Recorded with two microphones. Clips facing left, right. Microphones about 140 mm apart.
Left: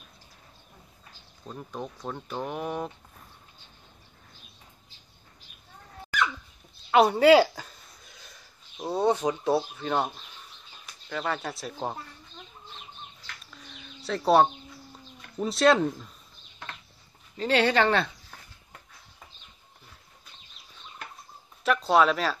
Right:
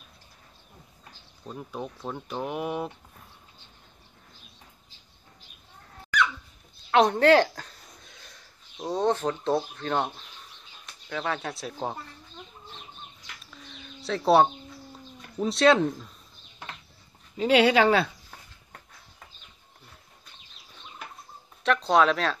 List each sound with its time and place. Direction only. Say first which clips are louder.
1.4 s speech: right 1 dB; 5° right (ahead or behind)
6.9 s speech: left 1 dB; 5° left (ahead or behind)
13.5 s bird: right 2 dB; centre (ahead or behind)
15.3 s speech: right 1 dB; centre (ahead or behind)
17.4 s a sound: right 3 dB; 10° right (ahead or behind)
21.6 s speech: even; centre (ahead or behind)